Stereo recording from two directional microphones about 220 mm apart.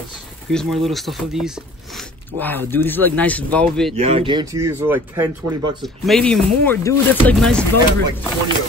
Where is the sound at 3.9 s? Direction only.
25° right (ahead or behind); by 5.2 s 10° right (ahead or behind).